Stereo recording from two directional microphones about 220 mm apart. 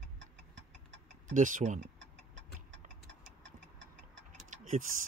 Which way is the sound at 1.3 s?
35° right (ahead or behind).